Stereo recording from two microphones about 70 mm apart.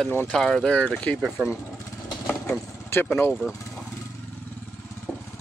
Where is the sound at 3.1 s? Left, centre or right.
Left.